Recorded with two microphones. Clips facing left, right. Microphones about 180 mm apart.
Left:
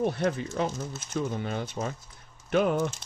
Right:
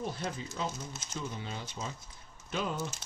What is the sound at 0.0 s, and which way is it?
Speech, 65° left (ahead or behind).